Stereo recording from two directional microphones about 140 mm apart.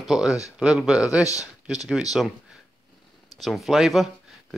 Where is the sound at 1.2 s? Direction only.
25° left (ahead or behind).